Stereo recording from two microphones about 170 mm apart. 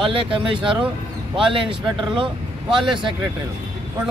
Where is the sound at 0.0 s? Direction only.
30° right (ahead or behind).